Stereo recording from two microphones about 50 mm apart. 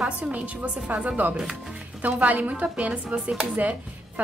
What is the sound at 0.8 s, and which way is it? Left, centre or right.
Speech, right.